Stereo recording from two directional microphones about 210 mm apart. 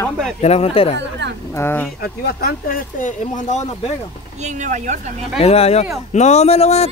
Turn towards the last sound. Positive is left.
turn(degrees=30)  # may be behind; listen again after turning